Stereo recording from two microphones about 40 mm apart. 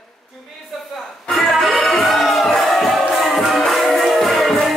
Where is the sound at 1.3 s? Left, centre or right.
Centre.